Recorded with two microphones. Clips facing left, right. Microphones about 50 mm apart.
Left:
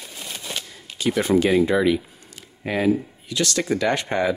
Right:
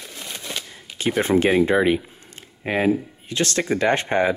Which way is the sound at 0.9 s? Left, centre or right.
Right.